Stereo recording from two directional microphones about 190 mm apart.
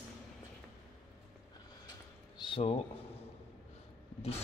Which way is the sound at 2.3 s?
25° left (ahead or behind).